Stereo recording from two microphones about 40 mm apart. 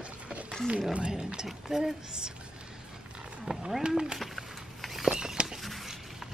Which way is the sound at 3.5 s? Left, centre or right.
Right.